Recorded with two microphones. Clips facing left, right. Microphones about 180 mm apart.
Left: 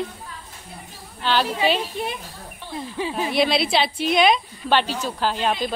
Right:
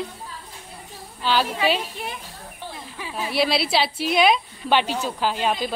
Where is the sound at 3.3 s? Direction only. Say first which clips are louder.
Left 1 dB; 5° right (ahead or behind).